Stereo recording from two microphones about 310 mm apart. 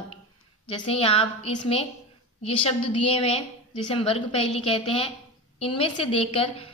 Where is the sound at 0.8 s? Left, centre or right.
Centre.